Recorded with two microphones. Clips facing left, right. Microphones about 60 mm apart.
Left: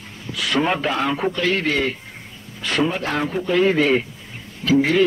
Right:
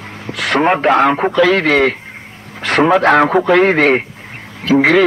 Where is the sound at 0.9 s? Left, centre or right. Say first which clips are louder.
Right 9 dB; right.